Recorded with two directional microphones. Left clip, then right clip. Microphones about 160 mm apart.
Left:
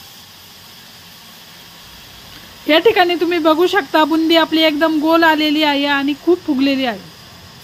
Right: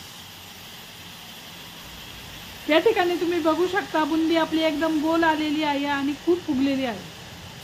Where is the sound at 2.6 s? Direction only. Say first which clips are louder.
Left 8 dB; 40° left (ahead or behind).